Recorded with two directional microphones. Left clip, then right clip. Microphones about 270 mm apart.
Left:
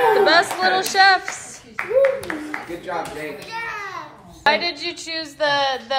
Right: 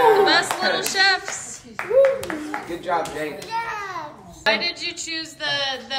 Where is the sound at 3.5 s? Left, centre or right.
Right.